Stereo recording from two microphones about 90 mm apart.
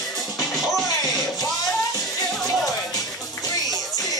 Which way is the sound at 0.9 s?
45° left (ahead or behind).